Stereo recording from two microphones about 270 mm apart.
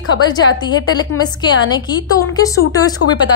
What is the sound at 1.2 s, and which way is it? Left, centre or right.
A woman's voice, centre.